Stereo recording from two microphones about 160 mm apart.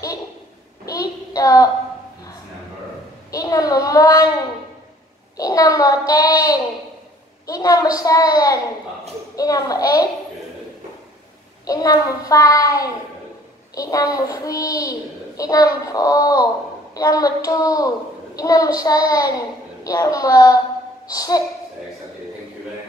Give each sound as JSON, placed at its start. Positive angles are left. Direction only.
{"t": 0.8, "sound": "child singing", "side_deg": 20}
{"t": 3.3, "sound": "a child's voice", "side_deg": 20}
{"t": 5.4, "sound": "a child's voice", "side_deg": 20}
{"t": 11.6, "sound": "a child's voice", "side_deg": 20}